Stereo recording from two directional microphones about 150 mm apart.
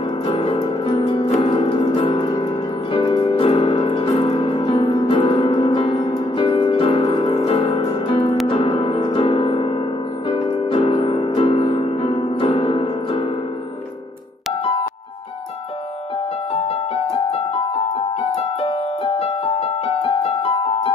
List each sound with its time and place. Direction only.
0.3 s music: 40° left (ahead or behind)
6.0 s piano: 30° left (ahead or behind)
7.8 s music: 30° left (ahead or behind)
16.5 s keyboard: 35° left (ahead or behind)
18.3 s piano: 40° left (ahead or behind)